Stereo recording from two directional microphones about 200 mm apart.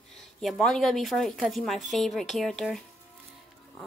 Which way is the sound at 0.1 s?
Centre (ahead or behind).